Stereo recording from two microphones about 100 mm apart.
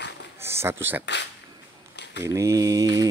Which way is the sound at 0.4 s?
25° right (ahead or behind).